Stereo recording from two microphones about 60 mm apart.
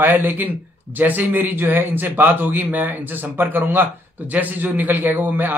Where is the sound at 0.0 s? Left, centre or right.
Right.